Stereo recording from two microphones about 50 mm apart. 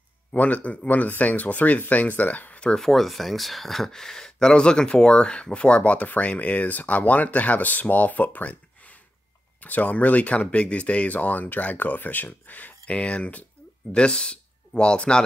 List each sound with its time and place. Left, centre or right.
0.4 s speech: left
2.8 s speech: centre